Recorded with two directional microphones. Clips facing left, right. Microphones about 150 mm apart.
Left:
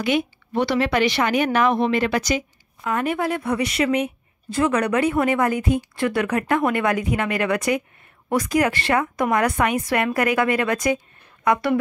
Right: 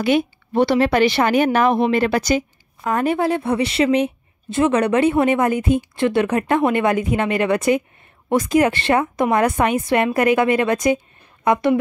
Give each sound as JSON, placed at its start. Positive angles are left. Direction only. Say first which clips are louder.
{"t": 0.0, "sound": "speech", "louder": "right 4 dB", "side_deg": -30}